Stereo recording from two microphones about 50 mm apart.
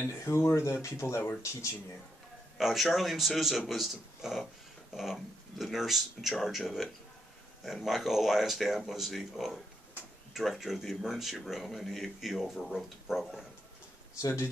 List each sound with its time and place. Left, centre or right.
0.1 s speech: left
0.8 s speech: left
2.5 s speech: centre
14.2 s speech: left